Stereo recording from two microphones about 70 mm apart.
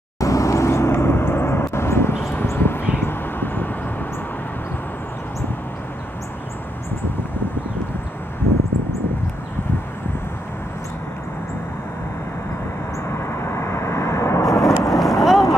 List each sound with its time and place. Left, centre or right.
0.2 s vehicle: left
13.5 s vehicle: left
14.9 s boat: centre